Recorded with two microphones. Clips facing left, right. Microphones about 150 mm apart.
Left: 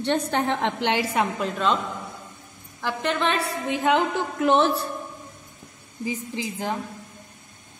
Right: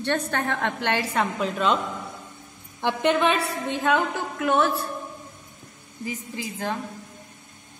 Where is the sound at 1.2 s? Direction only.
Centre (ahead or behind).